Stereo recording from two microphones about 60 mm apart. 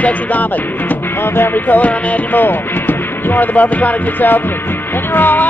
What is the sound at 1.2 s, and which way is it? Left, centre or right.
Speech, left.